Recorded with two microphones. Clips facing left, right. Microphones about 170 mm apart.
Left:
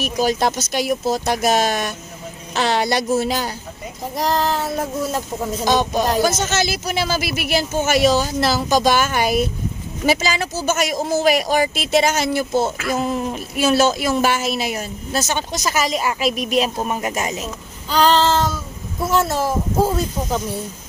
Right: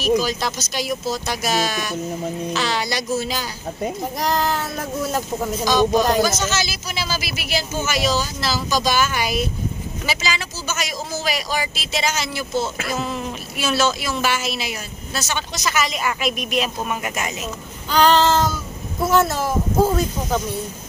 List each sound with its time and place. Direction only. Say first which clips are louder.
0.0 s a woman's voice: left 1 dB; 55° left (ahead or behind)
4.2 s child singing: left 2 dB; centre (ahead or behind)
5.7 s a woman's voice: right 1 dB; 55° left (ahead or behind); by 17.5 s 35° left (ahead or behind)
17.9 s child singing: even; centre (ahead or behind)